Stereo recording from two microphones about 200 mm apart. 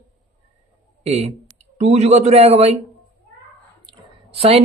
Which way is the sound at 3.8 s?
30° right (ahead or behind).